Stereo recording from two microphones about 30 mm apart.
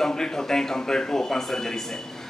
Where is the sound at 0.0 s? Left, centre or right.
Centre.